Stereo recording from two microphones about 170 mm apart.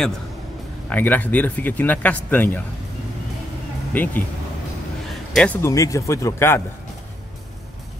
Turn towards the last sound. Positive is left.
turn(degrees=15)  # may be behind; listen again after turning